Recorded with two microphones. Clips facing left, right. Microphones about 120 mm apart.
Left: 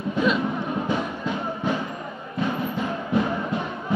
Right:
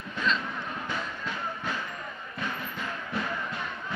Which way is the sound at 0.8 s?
25° left (ahead or behind).